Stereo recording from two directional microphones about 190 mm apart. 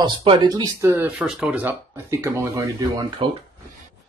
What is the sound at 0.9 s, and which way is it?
Speech, 5° right (ahead or behind).